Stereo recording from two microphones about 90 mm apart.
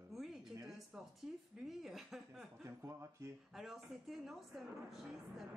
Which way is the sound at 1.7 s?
5° right (ahead or behind).